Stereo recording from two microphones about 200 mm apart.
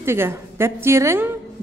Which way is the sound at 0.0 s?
10° right (ahead or behind).